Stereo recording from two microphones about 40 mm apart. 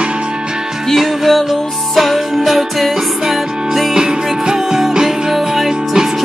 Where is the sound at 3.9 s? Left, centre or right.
Centre.